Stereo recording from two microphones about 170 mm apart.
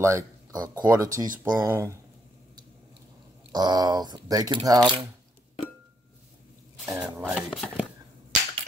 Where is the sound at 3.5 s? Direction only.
25° right (ahead or behind).